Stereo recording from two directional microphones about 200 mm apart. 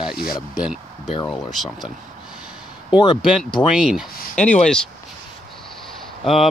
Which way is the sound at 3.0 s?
25° left (ahead or behind).